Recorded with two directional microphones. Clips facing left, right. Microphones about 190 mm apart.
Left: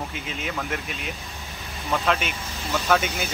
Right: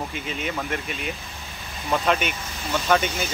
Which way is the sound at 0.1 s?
Centre (ahead or behind).